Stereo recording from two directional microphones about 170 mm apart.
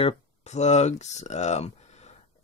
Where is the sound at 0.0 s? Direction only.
40° left (ahead or behind).